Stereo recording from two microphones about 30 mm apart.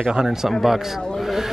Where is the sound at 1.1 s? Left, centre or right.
Centre.